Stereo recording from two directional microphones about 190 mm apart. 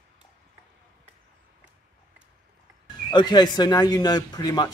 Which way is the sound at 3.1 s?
25° left (ahead or behind).